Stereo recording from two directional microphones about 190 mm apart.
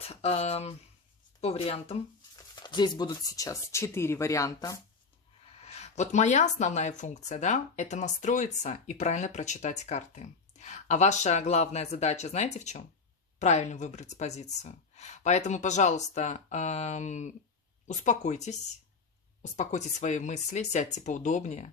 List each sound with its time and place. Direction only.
0.0 s speech: 30° left (ahead or behind)
5.5 s speech: 35° left (ahead or behind)